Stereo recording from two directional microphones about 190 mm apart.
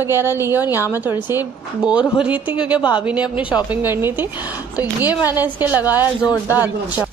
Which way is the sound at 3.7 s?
10° right (ahead or behind).